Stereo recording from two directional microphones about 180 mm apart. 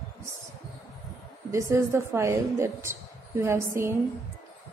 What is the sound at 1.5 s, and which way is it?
A woman's voice, 15° right (ahead or behind).